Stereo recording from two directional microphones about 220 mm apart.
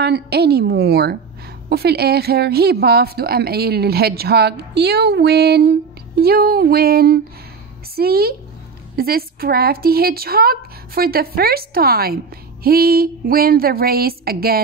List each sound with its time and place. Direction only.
0.0 s a woman's voice: 50° right (ahead or behind)